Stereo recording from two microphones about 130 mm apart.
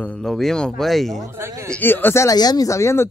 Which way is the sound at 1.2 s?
20° right (ahead or behind).